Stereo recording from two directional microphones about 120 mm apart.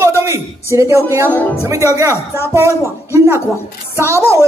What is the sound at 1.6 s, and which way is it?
Speech, 25° right (ahead or behind).